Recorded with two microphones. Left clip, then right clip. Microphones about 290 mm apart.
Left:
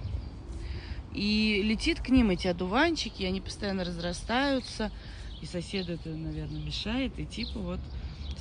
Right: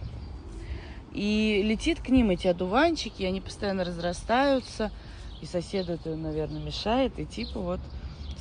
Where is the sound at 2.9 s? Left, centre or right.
Left.